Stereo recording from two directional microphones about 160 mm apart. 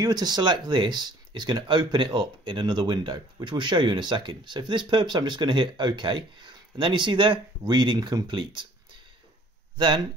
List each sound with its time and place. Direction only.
0.0 s speech: 25° right (ahead or behind)
9.8 s speech: 30° right (ahead or behind)